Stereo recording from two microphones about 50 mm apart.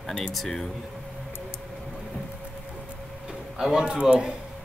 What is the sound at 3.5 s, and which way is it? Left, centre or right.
Speech, centre.